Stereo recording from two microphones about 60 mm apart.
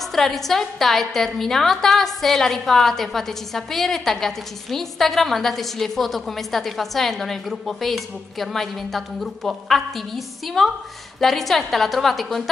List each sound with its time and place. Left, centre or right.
0.0 s a woman's voice: centre